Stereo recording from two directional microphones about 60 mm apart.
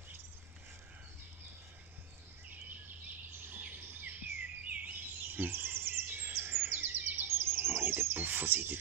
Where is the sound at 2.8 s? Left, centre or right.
Right.